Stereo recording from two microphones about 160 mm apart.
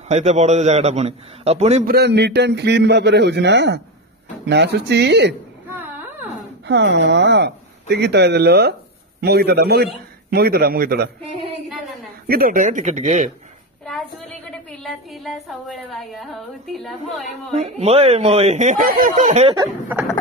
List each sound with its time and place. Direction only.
0.1 s a man's voice: 45° right (ahead or behind)
1.9 s speech: 90° right
6.6 s a man's voice: 90° right
10.3 s a man's voice: 75° right (ahead or behind)
12.3 s speech: 65° right (ahead or behind); by 13.3 s 50° right (ahead or behind)
13.8 s a sound: centre (ahead or behind)
14.8 s a woman's voice: centre (ahead or behind)
17.6 s speech: 40° right (ahead or behind)
19.5 s speech: 20° right (ahead or behind)